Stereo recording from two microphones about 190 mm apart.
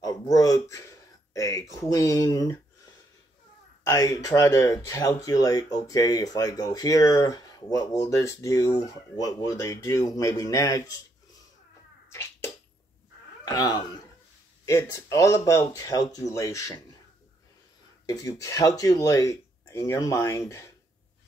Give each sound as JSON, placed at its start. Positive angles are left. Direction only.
{"t": 0.0, "sound": "a sound", "side_deg": 20}
{"t": 1.3, "sound": "speech", "side_deg": 15}
{"t": 3.8, "sound": "speech", "side_deg": 20}
{"t": 13.5, "sound": "speech", "side_deg": 20}
{"t": 18.0, "sound": "speech", "side_deg": 20}